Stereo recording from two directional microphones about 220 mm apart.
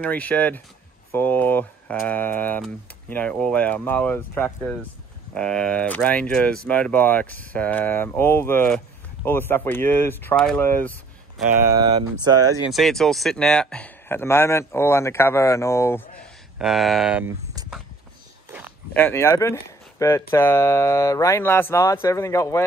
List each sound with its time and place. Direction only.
0.0 s speech: 5° left (ahead or behind)
11.7 s speech: 20° right (ahead or behind)
12.7 s speech: centre (ahead or behind)
16.5 s speech: centre (ahead or behind)
18.9 s speech: 10° left (ahead or behind)